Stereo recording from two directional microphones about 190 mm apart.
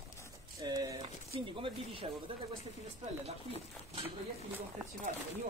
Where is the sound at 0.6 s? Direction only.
20° right (ahead or behind).